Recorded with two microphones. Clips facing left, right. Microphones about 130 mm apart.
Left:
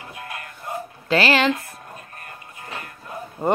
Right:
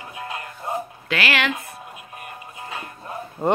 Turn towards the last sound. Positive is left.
turn(degrees=10)  # may be behind; listen again after turning